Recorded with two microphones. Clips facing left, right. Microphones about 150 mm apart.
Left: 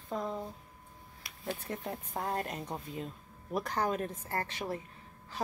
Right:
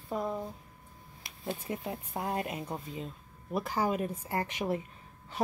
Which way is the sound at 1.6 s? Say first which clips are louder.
Right 2 dB; 10° right (ahead or behind).